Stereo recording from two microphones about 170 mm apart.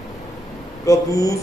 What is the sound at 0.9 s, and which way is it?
Speech, 20° left (ahead or behind).